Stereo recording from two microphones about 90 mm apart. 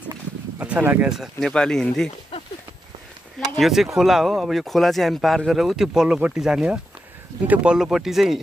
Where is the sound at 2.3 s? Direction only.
90° left.